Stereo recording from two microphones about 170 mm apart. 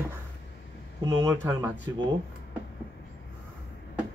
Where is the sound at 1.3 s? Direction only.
10° right (ahead or behind).